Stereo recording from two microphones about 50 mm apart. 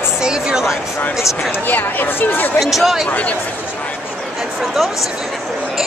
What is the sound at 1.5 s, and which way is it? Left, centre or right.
Speech, left.